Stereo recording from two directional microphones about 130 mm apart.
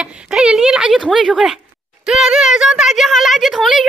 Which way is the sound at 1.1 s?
5° right (ahead or behind).